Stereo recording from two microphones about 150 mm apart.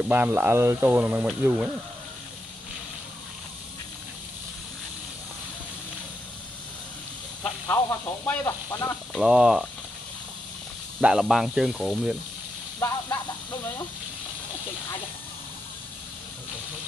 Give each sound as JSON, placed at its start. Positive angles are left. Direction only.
{"t": 0.1, "sound": "speech", "side_deg": -10}
{"t": 7.6, "sound": "speech", "side_deg": 15}
{"t": 9.1, "sound": "speech", "side_deg": -5}
{"t": 11.0, "sound": "speech", "side_deg": -5}
{"t": 12.8, "sound": "speech", "side_deg": 10}